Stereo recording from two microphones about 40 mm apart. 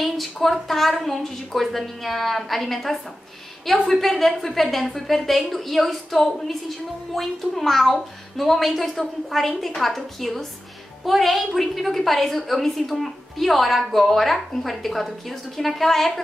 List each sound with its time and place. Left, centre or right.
0.0 s a woman's voice: centre